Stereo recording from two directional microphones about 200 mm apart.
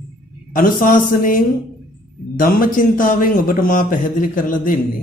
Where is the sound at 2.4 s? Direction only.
45° left (ahead or behind).